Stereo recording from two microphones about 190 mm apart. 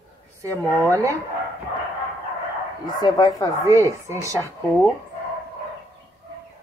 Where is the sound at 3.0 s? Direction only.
20° left (ahead or behind).